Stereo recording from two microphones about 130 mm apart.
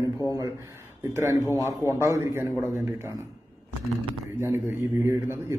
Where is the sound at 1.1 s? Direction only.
25° right (ahead or behind).